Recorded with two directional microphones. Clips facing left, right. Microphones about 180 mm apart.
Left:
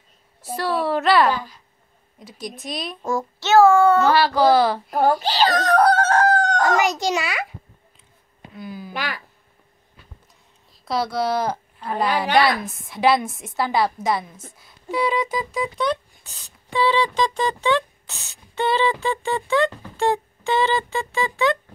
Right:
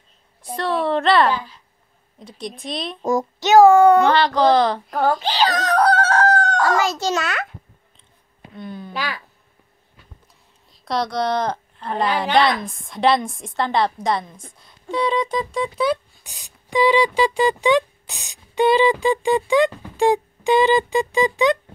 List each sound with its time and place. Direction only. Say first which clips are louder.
0.4 s a woman's voice: right 1 dB; 5° left (ahead or behind)
1.3 s a woman's voice: right 2 dB; 45° left (ahead or behind)
2.1 s a woman's voice: right 2 dB; centre (ahead or behind)
3.0 s child singing: right 6 dB; 20° right (ahead or behind)
4.0 s a sound: right 1 dB; 5° left (ahead or behind)
5.2 s chicken: left 1 dB; 45° left (ahead or behind)
6.4 s a child's voice: even; 15° left (ahead or behind)
8.5 s a sound: right 1 dB; 5° left (ahead or behind)
8.9 s a sound: right 1 dB; 55° left (ahead or behind)
10.9 s a woman's voice: right 1 dB; 5° left (ahead or behind)
15.9 s speech: right 3 dB; 15° right (ahead or behind)